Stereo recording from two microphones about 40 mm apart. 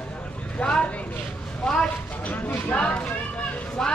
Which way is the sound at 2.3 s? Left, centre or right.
Left.